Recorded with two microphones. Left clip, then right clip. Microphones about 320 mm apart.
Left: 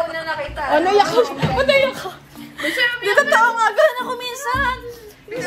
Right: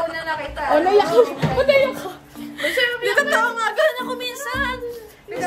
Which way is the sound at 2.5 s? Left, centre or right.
Centre.